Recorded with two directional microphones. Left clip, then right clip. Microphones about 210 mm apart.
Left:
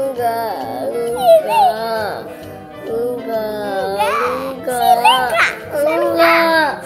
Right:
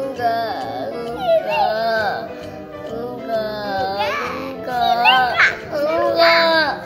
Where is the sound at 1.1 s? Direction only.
45° left (ahead or behind).